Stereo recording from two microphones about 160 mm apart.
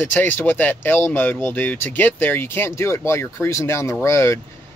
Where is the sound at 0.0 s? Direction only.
10° left (ahead or behind).